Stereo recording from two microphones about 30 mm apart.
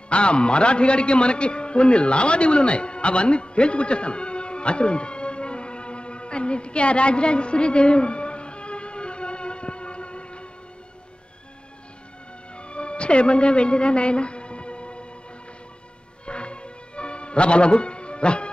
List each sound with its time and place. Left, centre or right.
0.1 s a man's voice: left
12.5 s music: left
16.3 s music: left